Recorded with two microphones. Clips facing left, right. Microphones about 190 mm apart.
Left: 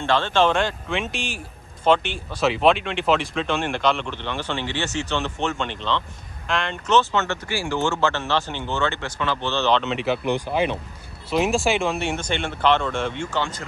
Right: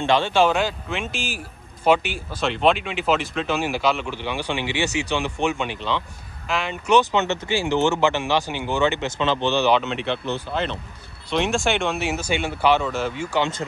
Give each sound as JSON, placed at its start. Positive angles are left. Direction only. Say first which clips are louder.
{"t": 0.0, "sound": "speech", "louder": "right 1 dB", "side_deg": -15}
{"t": 7.0, "sound": "speech", "louder": "right 2 dB", "side_deg": -15}
{"t": 9.8, "sound": "speech", "louder": "left 3 dB", "side_deg": 5}
{"t": 13.4, "sound": "speech", "louder": "right 6 dB", "side_deg": -25}